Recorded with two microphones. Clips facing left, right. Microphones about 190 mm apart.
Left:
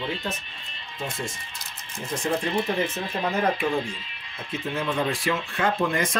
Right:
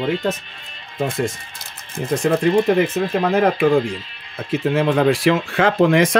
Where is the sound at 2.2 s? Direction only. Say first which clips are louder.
Right 10 dB; 75° right (ahead or behind).